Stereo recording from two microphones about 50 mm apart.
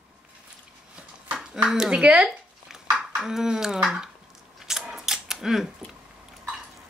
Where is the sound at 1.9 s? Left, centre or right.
Right.